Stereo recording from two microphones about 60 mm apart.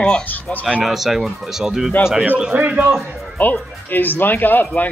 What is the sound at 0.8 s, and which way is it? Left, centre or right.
A man's voice, centre.